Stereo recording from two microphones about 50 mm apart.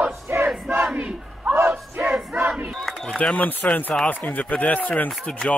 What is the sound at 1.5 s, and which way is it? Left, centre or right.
Battle cry, right.